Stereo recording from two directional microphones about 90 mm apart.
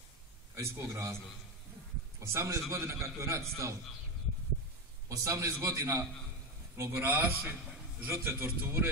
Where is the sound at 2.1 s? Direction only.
35° right (ahead or behind).